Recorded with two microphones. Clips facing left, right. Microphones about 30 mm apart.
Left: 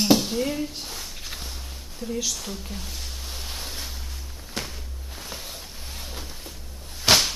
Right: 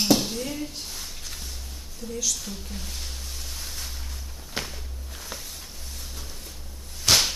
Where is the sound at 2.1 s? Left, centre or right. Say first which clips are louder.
Even; left.